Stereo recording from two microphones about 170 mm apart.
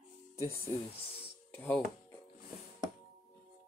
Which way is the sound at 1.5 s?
10° left (ahead or behind).